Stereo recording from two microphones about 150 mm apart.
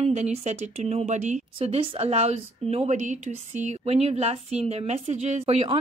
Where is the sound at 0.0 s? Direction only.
45° right (ahead or behind).